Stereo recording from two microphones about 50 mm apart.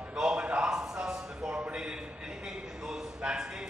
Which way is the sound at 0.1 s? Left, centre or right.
Centre.